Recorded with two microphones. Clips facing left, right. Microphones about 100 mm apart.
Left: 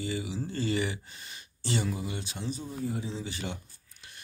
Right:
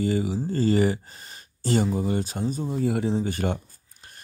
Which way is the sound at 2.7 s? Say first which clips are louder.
Right 13 dB; 80° right.